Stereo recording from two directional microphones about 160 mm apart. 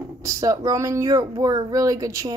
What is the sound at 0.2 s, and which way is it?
Speech, 20° right (ahead or behind).